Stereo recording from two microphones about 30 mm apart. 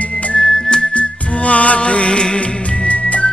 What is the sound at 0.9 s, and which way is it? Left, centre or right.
Music, left.